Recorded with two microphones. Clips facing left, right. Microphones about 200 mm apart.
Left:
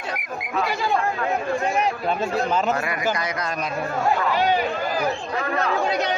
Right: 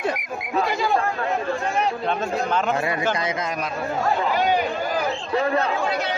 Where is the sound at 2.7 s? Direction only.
25° right (ahead or behind).